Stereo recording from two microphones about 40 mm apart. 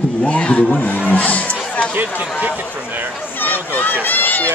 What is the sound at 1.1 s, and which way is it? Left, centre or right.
Music, left.